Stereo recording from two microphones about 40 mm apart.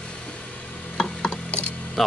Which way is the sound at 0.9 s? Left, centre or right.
Centre.